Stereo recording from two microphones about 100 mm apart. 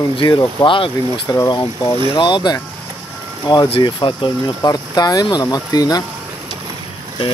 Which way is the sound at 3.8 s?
55° left (ahead or behind).